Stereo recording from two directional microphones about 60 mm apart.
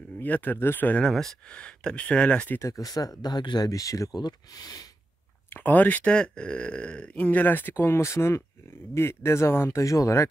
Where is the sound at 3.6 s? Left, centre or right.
Left.